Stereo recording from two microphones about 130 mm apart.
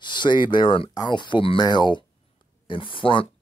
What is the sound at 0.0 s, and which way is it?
Speech, 35° left (ahead or behind).